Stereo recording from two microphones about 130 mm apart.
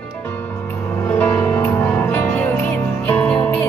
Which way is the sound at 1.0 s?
15° left (ahead or behind).